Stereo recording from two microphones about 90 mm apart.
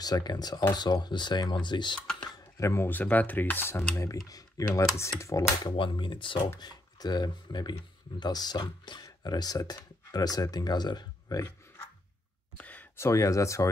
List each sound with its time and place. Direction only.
0.0 s speech: 50° left (ahead or behind)
2.5 s speech: 35° left (ahead or behind)
2.9 s speech: 20° left (ahead or behind)
3.9 s speech: 35° left (ahead or behind)
5.6 s speech: 65° left (ahead or behind); by 11.4 s 50° left (ahead or behind)
12.5 s a sound: 15° left (ahead or behind)
12.9 s speech: 35° left (ahead or behind)